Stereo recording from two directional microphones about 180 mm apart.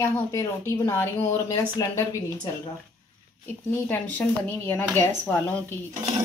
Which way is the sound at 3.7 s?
10° left (ahead or behind).